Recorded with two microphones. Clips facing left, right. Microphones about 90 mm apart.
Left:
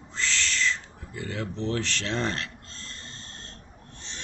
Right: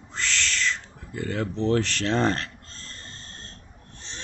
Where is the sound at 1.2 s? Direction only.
50° right (ahead or behind).